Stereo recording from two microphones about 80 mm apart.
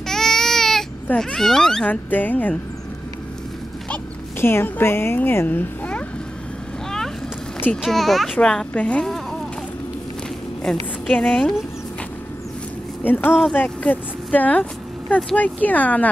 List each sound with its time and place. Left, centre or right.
0.0 s baby cry: centre
1.1 s speech: centre
1.9 s speech: left
4.4 s speech: left
7.8 s a child's voice: centre
9.0 s a sound: centre
10.6 s a woman's voice: centre
13.0 s speech: left
13.3 s a child's voice: centre
13.6 s speech: left